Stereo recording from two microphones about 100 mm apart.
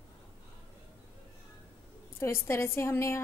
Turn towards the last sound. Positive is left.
turn(degrees=25)  # may be behind; listen again after turning